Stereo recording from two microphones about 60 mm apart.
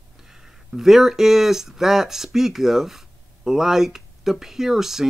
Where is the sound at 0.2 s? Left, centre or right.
Centre.